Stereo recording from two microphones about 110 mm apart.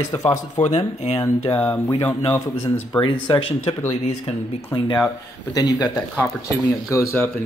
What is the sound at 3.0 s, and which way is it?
Speech, 50° left (ahead or behind).